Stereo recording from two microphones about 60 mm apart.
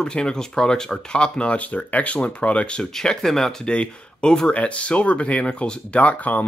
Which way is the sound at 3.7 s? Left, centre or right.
Centre.